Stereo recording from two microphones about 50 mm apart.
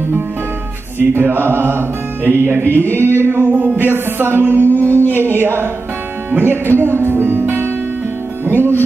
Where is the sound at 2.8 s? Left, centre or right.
Right.